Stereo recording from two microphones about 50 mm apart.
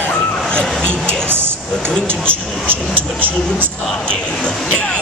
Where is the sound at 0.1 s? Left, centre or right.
Centre.